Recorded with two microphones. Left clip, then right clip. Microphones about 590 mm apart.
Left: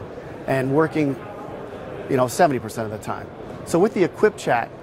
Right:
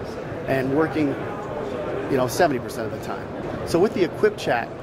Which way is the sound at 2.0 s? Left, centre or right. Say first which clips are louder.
Left 3 dB; left.